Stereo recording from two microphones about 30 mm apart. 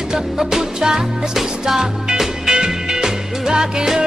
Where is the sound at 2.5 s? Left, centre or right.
Right.